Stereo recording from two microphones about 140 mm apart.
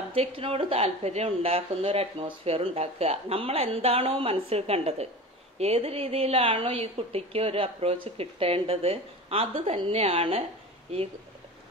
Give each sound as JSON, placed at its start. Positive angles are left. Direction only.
{"t": 0.1, "sound": "speech", "side_deg": -45}